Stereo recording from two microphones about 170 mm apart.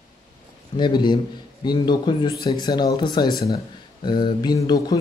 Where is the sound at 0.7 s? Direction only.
25° left (ahead or behind).